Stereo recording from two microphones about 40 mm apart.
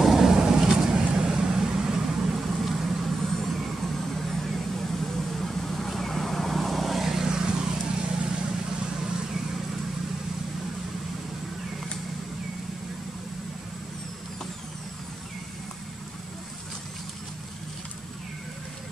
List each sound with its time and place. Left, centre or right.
0.0 s vehicle: centre
3.2 s vehicle: centre